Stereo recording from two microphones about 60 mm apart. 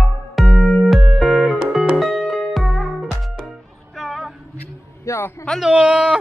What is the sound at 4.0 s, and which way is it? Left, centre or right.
Female singing, centre.